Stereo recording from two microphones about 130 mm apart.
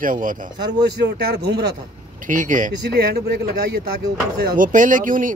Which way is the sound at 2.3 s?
85° right.